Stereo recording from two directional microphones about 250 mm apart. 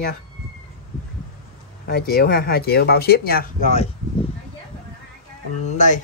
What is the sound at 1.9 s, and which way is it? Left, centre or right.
Speech, left.